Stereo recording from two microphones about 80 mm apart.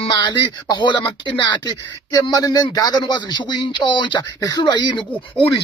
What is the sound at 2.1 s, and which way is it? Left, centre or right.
Speech, left.